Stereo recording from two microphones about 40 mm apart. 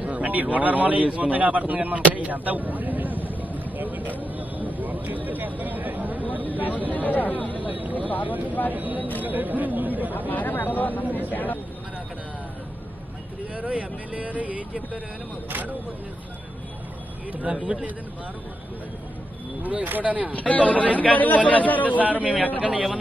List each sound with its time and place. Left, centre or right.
0.0 s a man's voice: right
4.4 s a sound: right
6.4 s a sound: left
6.9 s speech: left
7.6 s a sound: right
8.7 s speech: right
10.3 s speech: left
11.1 s speech: right
11.3 s speech: left
13.6 s speech: right
17.3 s speech: right
19.6 s speech: right
20.3 s speech: left
22.2 s speech: right